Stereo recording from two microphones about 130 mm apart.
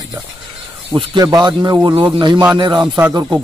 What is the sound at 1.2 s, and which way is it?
Speech, 30° right (ahead or behind).